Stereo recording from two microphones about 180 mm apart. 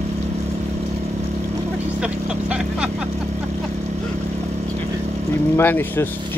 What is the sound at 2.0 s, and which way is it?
Vehicle, 5° right (ahead or behind).